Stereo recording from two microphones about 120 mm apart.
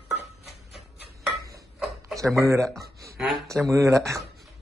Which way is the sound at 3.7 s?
25° right (ahead or behind).